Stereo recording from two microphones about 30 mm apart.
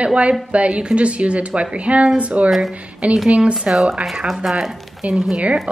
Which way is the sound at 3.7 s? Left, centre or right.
Centre.